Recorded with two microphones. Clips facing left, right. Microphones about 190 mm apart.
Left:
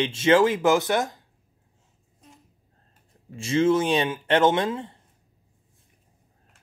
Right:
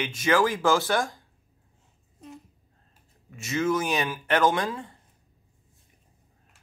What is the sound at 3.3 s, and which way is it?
Speech, 30° left (ahead or behind).